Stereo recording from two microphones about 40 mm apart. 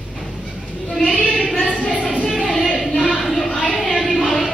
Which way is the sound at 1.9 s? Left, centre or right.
Left.